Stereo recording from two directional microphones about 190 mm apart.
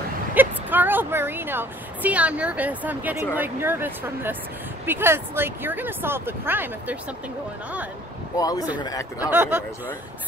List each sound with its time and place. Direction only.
0.3 s a woman's voice: 10° right (ahead or behind)
8.4 s speech: 20° left (ahead or behind)
9.2 s speech: 10° right (ahead or behind)